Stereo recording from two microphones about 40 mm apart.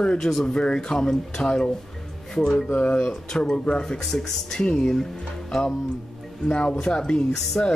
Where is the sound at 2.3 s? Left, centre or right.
Centre.